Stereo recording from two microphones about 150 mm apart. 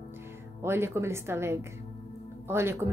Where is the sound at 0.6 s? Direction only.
15° right (ahead or behind).